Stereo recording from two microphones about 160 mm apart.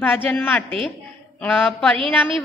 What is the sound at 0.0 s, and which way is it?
A woman's voice, 10° left (ahead or behind).